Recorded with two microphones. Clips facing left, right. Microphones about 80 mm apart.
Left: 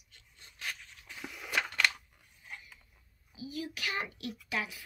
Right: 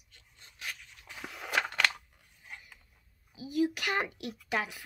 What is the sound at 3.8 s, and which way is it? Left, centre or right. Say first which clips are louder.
Speech: right 5 dB; right.